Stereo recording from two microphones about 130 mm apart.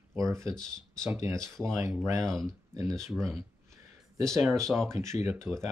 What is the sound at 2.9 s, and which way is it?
Speech, centre (ahead or behind).